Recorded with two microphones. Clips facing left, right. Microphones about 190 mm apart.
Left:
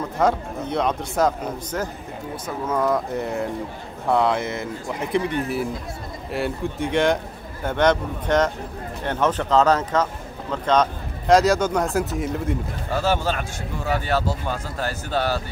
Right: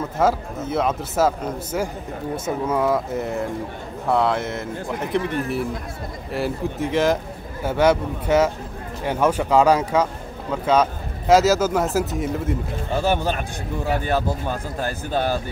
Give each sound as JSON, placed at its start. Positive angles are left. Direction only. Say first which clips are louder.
{"t": 0.2, "sound": "speech", "louder": "right 1 dB", "side_deg": -5}
{"t": 12.9, "sound": "speech", "louder": "right 1 dB", "side_deg": -15}